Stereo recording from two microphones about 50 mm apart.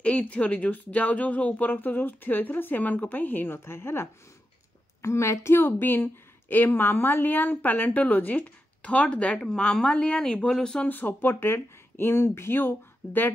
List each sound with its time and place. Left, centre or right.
0.0 s speech: left
3.4 s speech: left
5.0 s speech: left; by 10.8 s centre
10.9 s speech: left